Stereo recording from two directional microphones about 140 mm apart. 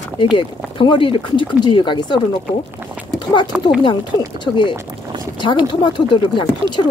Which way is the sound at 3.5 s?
5° right (ahead or behind).